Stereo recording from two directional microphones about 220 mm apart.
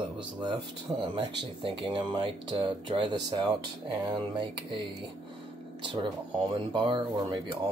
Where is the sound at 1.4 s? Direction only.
20° right (ahead or behind).